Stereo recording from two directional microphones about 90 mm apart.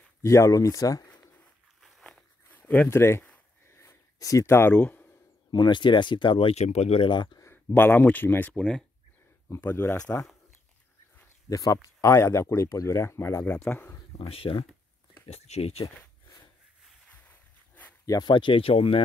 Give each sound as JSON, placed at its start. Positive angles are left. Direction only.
{"t": 0.2, "sound": "speech", "side_deg": 35}
{"t": 1.8, "sound": "walk", "side_deg": 0}
{"t": 2.4, "sound": "a sound", "side_deg": 20}
{"t": 4.7, "sound": "a sound", "side_deg": 20}
{"t": 5.5, "sound": "speech", "side_deg": 60}
{"t": 7.5, "sound": "speech", "side_deg": 20}
{"t": 8.5, "sound": "speech", "side_deg": 5}
{"t": 9.5, "sound": "speech", "side_deg": 25}
{"t": 11.4, "sound": "speech", "side_deg": 40}
{"t": 14.1, "sound": "speech", "side_deg": 90}
{"t": 17.1, "sound": "a sound", "side_deg": 20}
{"t": 18.0, "sound": "speech", "side_deg": 40}
{"t": 18.3, "sound": "speech", "side_deg": 75}